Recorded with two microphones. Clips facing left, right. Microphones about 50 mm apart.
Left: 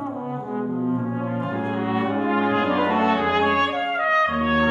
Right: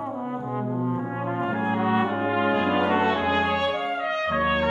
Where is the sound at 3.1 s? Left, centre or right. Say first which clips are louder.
Left 3 dB; left.